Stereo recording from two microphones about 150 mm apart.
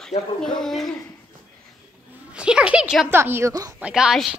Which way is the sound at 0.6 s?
5° left (ahead or behind).